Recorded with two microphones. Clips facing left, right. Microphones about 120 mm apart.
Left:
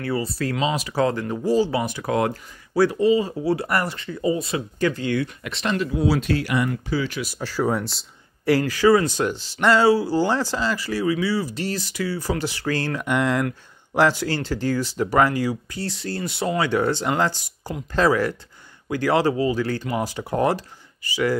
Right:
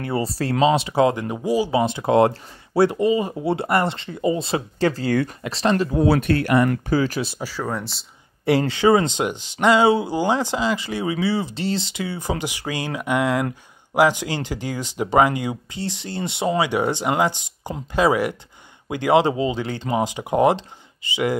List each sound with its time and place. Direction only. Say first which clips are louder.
0.0 s speech: right 1 dB; 30° right (ahead or behind)
0.8 s speech: right 3 dB; 20° right (ahead or behind)
1.8 s speech: right 6 dB; 25° right (ahead or behind)
6.0 s speech: right 3 dB; 55° right (ahead or behind)
7.6 s speech: left 6 dB; 5° left (ahead or behind)
8.5 s speech: even; 25° right (ahead or behind)